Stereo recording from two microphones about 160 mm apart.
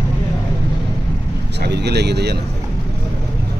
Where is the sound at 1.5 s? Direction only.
90° right.